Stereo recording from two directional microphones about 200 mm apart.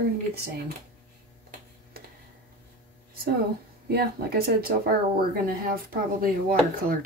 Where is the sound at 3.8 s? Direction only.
50° right (ahead or behind).